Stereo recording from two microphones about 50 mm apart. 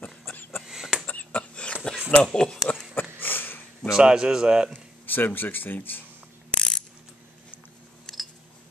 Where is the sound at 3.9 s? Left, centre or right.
Centre.